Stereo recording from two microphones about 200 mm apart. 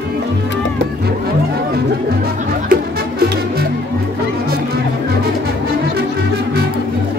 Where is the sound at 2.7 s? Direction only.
50° right (ahead or behind).